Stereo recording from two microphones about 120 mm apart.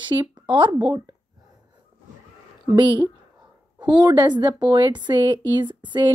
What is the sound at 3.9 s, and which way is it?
Speech, 35° right (ahead or behind).